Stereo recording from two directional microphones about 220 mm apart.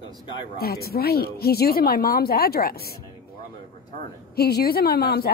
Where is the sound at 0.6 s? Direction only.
45° left (ahead or behind).